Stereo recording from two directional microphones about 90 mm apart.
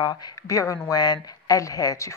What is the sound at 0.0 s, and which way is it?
A woman's voice, 45° left (ahead or behind).